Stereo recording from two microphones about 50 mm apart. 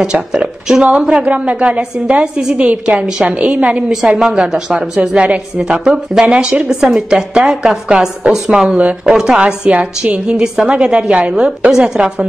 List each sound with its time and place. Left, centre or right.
0.0 s a woman's voice: centre
1.1 s a woman's voice: right
3.9 s a woman's voice: centre
6.7 s a woman's voice: centre
9.7 s a woman's voice: right
10.3 s a woman's voice: centre
10.7 s a woman's voice: right